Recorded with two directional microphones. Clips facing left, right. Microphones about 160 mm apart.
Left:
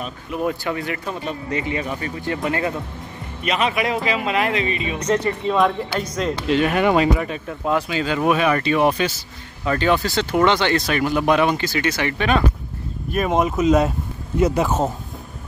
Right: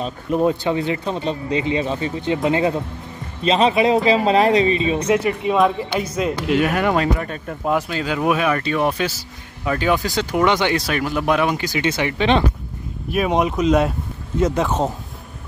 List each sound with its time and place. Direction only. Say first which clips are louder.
0.0 s speech: right 5 dB; 30° right (ahead or behind)
5.0 s speech: right 2 dB; 10° right (ahead or behind); by 7.5 s 5° left (ahead or behind)
7.6 s speech: even; 5° right (ahead or behind)
9.7 s speech: even; 10° right (ahead or behind)
13.1 s speech: right 1 dB; centre (ahead or behind)